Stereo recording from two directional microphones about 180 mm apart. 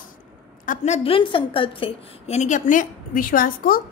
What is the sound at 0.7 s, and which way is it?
A woman's voice, 40° left (ahead or behind).